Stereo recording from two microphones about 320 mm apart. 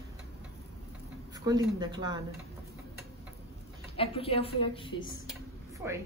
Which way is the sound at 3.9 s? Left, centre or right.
Centre.